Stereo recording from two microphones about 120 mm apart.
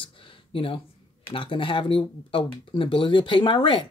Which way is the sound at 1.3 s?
45° left (ahead or behind).